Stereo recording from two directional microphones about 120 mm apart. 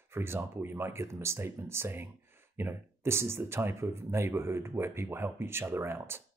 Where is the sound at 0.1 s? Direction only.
20° right (ahead or behind).